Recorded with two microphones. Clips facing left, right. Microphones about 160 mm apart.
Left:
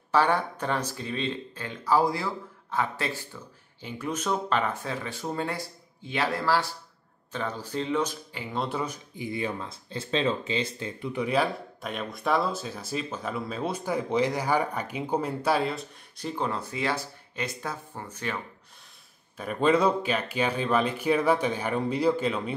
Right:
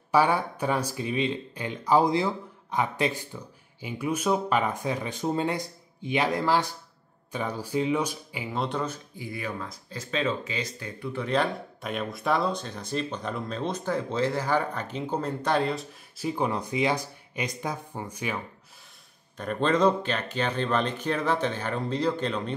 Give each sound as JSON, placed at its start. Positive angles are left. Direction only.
{"t": 0.1, "sound": "speech", "side_deg": -10}
{"t": 8.5, "sound": "speech", "side_deg": 5}
{"t": 11.2, "sound": "speech", "side_deg": 5}
{"t": 19.3, "sound": "speech", "side_deg": 5}